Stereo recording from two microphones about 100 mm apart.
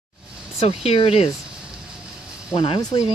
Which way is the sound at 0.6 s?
90° left.